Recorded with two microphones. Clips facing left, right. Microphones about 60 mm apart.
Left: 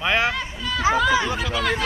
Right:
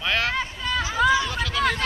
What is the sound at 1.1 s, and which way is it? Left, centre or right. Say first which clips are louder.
Chatter: left 1 dB; left.